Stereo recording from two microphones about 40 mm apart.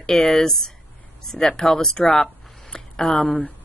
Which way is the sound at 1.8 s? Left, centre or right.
Centre.